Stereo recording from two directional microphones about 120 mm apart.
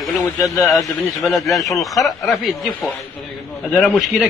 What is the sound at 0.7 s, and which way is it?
Speech, centre (ahead or behind).